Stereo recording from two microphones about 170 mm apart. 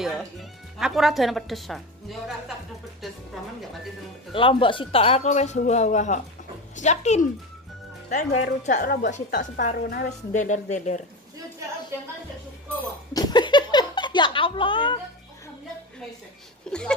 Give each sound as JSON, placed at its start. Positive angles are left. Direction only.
{"t": 0.0, "sound": "speech", "side_deg": -5}
{"t": 4.3, "sound": "a woman's voice", "side_deg": 30}
{"t": 10.0, "sound": "a woman's voice", "side_deg": 45}
{"t": 13.1, "sound": "a sound", "side_deg": 25}
{"t": 16.7, "sound": "speech", "side_deg": 5}